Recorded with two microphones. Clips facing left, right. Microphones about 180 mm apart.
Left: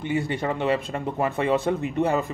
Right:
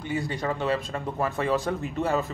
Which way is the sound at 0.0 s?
60° left (ahead or behind).